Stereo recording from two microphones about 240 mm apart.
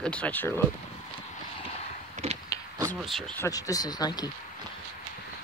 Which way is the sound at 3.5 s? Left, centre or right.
Centre.